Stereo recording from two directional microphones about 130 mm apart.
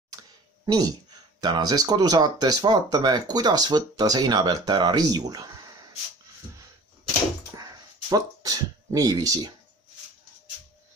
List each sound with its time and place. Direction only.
0.7 s speech: 30° right (ahead or behind)
8.1 s speech: 30° right (ahead or behind)